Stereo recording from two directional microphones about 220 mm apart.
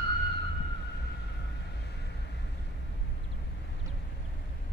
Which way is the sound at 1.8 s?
50° left (ahead or behind).